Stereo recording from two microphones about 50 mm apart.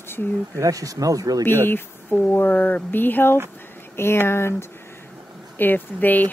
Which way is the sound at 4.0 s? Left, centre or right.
Left.